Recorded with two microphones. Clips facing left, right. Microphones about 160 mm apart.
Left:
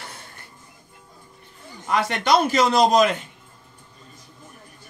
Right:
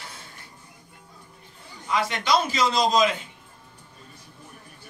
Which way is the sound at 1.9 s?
60° left (ahead or behind).